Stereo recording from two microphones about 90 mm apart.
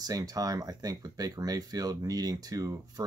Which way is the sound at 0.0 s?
40° right (ahead or behind).